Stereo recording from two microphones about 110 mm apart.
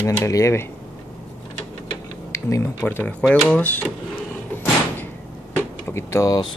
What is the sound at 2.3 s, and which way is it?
Speech, 25° left (ahead or behind).